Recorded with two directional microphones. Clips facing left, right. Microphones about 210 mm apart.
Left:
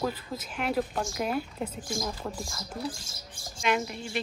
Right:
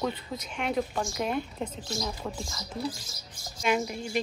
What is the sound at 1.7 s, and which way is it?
Speech, 50° left (ahead or behind).